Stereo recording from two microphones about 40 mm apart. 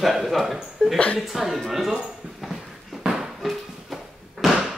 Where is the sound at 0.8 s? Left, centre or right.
Left.